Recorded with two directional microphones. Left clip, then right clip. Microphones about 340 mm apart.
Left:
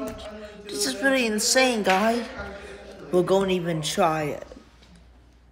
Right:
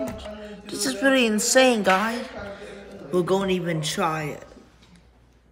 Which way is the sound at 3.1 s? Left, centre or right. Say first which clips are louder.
Left 1 dB; centre.